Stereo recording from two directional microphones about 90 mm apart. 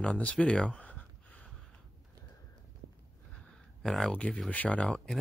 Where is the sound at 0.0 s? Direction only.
10° left (ahead or behind).